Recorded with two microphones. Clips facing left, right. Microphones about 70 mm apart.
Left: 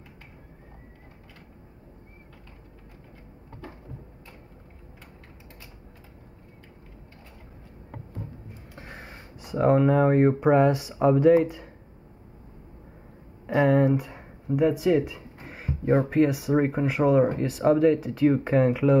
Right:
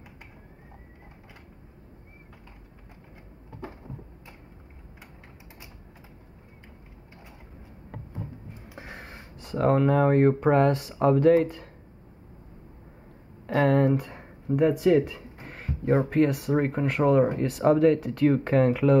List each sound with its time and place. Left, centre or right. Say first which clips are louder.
8.6 s speech: right 1 dB; centre
13.7 s speech: left 1 dB; centre